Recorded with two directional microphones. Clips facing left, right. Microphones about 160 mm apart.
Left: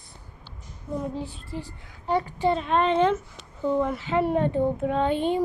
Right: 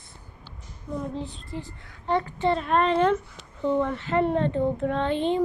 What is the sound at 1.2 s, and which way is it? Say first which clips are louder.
A child's voice: even; 5° left (ahead or behind).